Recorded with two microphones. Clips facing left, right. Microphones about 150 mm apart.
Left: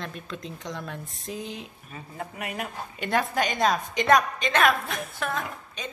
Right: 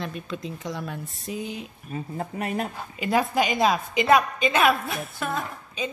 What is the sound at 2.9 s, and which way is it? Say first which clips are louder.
A woman's voice: right 3 dB; 5° right (ahead or behind).